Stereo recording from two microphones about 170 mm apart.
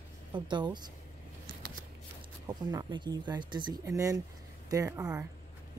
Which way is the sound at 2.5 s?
25° right (ahead or behind).